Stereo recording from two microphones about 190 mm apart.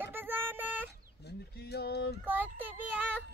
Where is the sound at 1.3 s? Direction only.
60° left (ahead or behind).